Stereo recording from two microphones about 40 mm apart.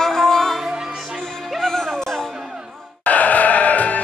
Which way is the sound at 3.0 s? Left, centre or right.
Left.